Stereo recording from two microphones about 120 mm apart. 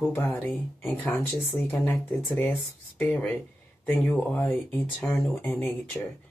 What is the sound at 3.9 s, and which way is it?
Speech, 5° left (ahead or behind).